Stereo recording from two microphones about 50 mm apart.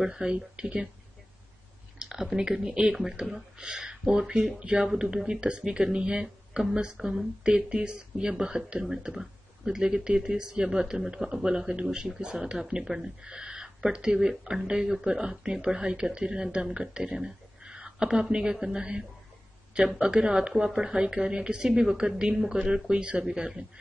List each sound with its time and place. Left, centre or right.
0.0 s speech: centre
2.0 s speech: centre
16.7 s a sound: centre
18.3 s speech: centre